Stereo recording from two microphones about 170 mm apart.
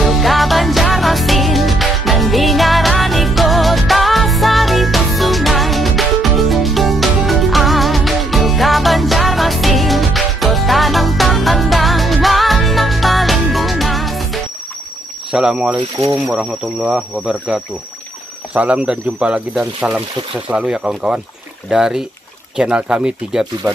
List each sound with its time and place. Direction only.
0.0 s music: centre (ahead or behind)
15.3 s speech: 5° right (ahead or behind)